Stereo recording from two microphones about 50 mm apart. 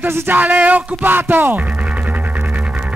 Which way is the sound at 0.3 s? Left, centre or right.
Right.